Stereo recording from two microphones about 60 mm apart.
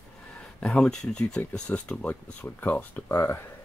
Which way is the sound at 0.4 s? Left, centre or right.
Centre.